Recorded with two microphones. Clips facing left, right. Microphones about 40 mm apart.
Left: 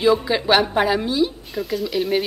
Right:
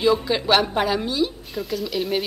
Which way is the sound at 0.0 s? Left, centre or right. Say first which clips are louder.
Left 2 dB; centre.